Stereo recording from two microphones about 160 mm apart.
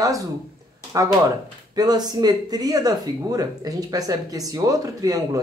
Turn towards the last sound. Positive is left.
turn(degrees=-20)  # may be behind; listen again after turning